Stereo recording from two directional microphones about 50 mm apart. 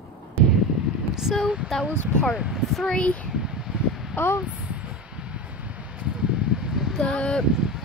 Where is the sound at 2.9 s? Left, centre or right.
Left.